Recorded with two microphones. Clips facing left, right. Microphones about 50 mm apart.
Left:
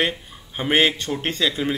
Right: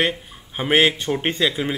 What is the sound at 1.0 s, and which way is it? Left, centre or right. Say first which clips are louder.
Speech: right 2 dB; centre.